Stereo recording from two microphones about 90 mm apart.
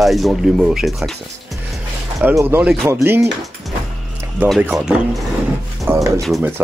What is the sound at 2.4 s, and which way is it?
Speech, 20° right (ahead or behind).